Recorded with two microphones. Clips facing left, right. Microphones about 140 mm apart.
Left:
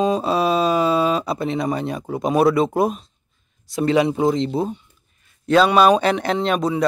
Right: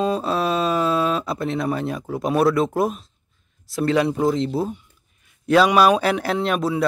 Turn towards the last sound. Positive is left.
turn(degrees=-5)  # may be behind; listen again after turning